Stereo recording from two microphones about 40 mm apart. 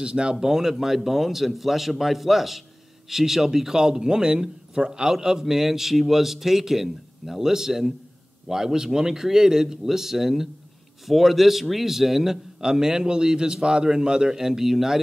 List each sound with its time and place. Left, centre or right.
0.0 s a man's voice: right